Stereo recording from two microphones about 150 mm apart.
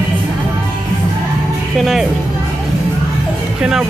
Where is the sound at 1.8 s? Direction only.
Centre (ahead or behind).